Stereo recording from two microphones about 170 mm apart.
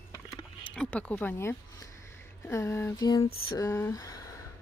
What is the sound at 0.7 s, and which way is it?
A woman's voice, 5° left (ahead or behind).